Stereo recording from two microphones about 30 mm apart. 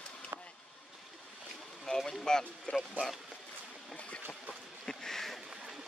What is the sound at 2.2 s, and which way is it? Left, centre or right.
Speech, left.